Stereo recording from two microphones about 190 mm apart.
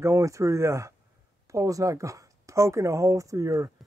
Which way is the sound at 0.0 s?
15° right (ahead or behind).